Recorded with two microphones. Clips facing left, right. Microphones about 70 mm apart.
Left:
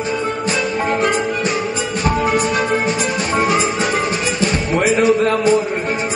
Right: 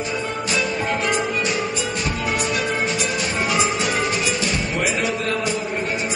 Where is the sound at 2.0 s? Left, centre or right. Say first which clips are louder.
Left 10 dB; left.